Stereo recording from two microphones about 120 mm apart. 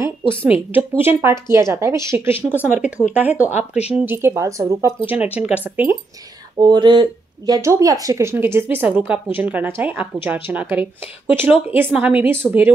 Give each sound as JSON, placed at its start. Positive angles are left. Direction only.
{"t": 0.3, "sound": "a woman's voice", "side_deg": -15}
{"t": 5.0, "sound": "a woman's voice", "side_deg": -15}
{"t": 6.6, "sound": "a woman's voice", "side_deg": -40}